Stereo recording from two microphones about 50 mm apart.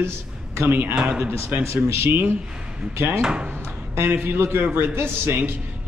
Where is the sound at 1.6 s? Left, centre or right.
Right.